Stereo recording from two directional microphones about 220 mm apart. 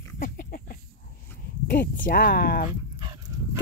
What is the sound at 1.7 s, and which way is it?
Speech, 40° left (ahead or behind).